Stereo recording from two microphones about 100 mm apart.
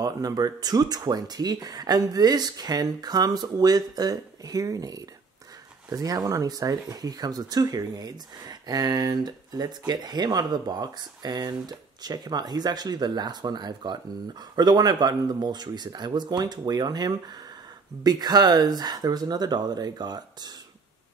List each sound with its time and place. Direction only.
0.0 s speech: 40° right (ahead or behind)